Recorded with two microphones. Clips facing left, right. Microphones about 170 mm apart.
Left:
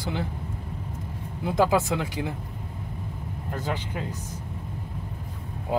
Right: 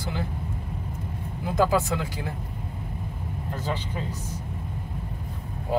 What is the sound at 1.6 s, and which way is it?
Speech, 20° left (ahead or behind).